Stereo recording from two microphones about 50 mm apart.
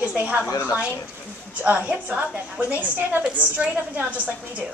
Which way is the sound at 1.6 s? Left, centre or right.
Right.